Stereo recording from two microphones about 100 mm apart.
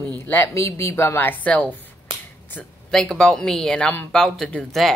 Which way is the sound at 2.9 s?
5° left (ahead or behind).